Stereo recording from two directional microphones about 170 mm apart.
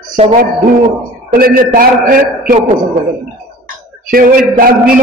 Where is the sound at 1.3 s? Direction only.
55° right (ahead or behind).